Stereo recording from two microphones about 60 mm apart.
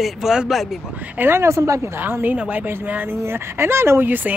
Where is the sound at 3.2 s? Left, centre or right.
Right.